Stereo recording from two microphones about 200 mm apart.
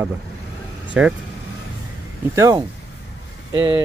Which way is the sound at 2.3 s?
15° right (ahead or behind).